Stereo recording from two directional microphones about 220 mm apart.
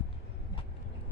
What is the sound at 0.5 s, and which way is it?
Vehicle, 20° left (ahead or behind).